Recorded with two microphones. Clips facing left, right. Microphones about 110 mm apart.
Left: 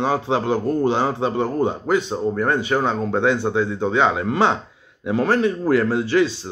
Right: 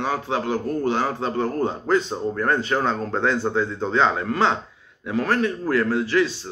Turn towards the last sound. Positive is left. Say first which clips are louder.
# left 2 dB
turn(degrees=25)  # may be behind; listen again after turning